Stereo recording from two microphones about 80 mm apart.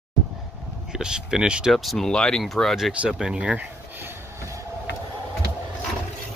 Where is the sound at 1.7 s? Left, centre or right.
Centre.